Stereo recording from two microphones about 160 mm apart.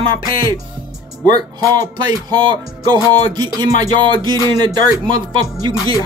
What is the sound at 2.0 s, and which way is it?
Speech, 25° right (ahead or behind).